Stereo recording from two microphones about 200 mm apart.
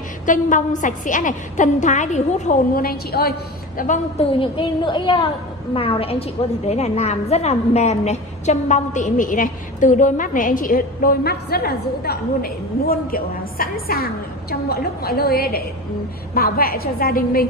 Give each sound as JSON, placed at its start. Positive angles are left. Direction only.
{"t": 0.2, "sound": "a woman's voice", "side_deg": 40}